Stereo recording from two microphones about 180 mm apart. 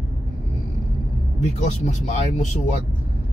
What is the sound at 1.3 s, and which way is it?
Speech, 40° left (ahead or behind).